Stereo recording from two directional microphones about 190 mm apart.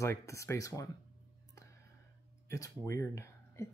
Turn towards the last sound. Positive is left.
turn(degrees=15)  # may be behind; listen again after turning